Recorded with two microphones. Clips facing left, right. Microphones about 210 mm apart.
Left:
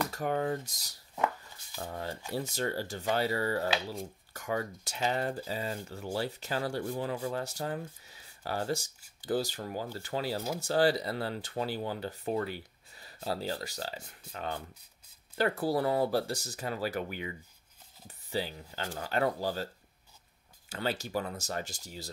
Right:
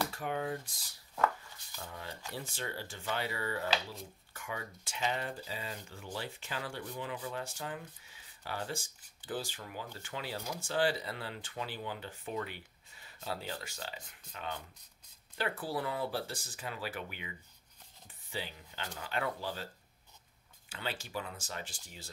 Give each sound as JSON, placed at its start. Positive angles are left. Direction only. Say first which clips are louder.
{"t": 0.1, "sound": "speech", "louder": "left 5 dB", "side_deg": 45}